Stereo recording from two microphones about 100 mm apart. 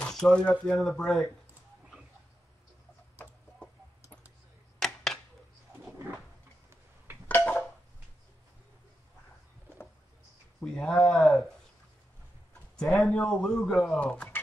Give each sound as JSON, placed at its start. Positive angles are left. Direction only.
{"t": 0.1, "sound": "a man's voice", "side_deg": 10}
{"t": 4.7, "sound": "a sound", "side_deg": 5}
{"t": 7.2, "sound": "a sound", "side_deg": 15}
{"t": 10.6, "sound": "a man's voice", "side_deg": 5}
{"t": 13.0, "sound": "a man's voice", "side_deg": 5}
{"t": 13.9, "sound": "speech", "side_deg": 10}